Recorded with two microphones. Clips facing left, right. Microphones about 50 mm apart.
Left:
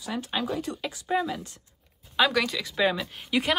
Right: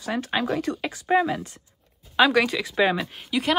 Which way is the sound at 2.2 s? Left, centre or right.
Right.